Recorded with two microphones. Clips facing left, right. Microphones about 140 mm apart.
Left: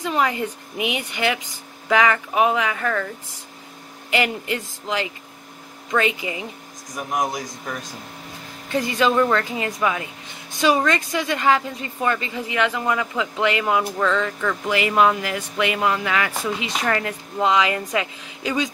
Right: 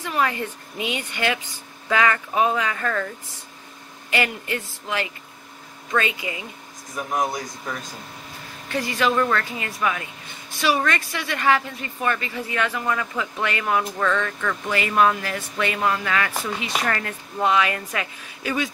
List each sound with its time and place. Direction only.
0.0 s a woman's voice: 15° left (ahead or behind)
4.1 s a woman's voice: 20° left (ahead or behind)
8.7 s a woman's voice: 20° left (ahead or behind)
13.8 s speech: centre (ahead or behind)
14.7 s a woman's voice: 15° left (ahead or behind)